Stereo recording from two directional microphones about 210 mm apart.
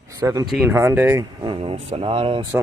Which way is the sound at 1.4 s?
25° right (ahead or behind).